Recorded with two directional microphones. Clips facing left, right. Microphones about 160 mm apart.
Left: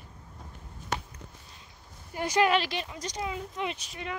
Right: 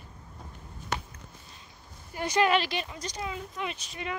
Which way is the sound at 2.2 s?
10° left (ahead or behind).